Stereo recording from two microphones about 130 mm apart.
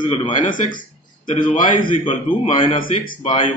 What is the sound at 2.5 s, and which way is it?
Speech, 40° left (ahead or behind).